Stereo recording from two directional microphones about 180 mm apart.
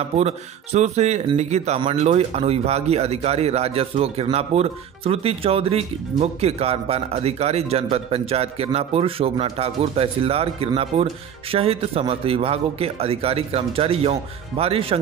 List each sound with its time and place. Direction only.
0.2 s speech: 35° right (ahead or behind)
1.8 s speech: 25° right (ahead or behind)